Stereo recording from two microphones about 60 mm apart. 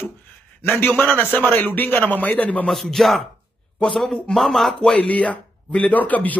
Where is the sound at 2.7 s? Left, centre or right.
Centre.